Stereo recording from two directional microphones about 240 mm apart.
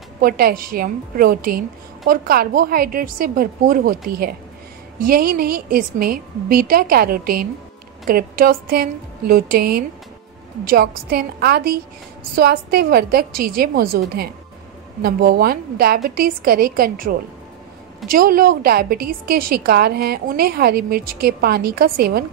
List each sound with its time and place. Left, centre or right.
0.2 s a woman's voice: right